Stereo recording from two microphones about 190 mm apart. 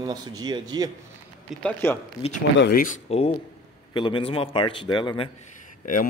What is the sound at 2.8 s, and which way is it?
A man's voice, 35° left (ahead or behind).